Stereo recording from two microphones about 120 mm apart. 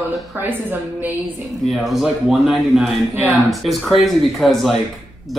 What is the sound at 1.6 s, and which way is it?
Speech, centre (ahead or behind).